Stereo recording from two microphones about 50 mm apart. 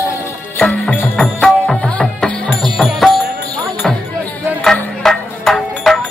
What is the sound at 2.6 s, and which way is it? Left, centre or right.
Music, centre.